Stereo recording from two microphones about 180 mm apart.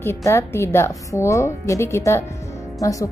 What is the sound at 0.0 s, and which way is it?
A woman's voice, 15° left (ahead or behind).